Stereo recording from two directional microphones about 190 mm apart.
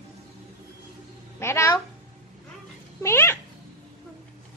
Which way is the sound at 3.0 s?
15° left (ahead or behind).